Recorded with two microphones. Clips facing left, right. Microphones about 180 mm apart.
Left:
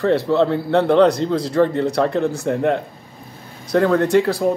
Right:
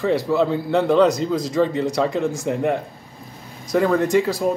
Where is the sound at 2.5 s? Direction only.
10° right (ahead or behind).